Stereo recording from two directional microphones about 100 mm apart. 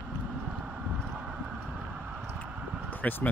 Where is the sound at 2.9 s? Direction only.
15° left (ahead or behind).